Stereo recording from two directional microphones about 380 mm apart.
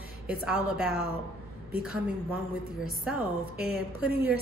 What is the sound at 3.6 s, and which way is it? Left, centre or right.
Speech, centre.